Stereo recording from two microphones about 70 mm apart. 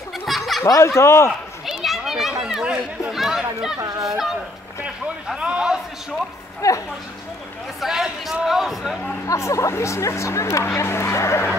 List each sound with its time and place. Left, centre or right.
0.2 s children playing: centre
0.7 s speech: left
1.7 s children playing: centre
3.2 s chatter: centre
4.8 s a sound: centre
6.6 s speech: left
7.8 s a man's voice: centre
9.3 s speech: left